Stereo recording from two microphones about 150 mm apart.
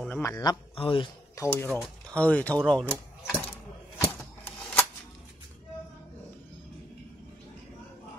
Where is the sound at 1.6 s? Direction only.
5° right (ahead or behind).